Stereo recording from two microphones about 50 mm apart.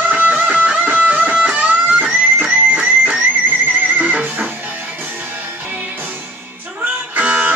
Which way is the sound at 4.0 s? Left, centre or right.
Right.